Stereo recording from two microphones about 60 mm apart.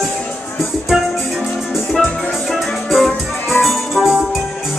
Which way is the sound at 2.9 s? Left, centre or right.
Centre.